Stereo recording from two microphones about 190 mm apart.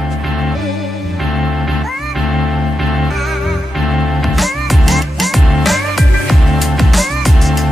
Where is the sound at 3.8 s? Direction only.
Centre (ahead or behind).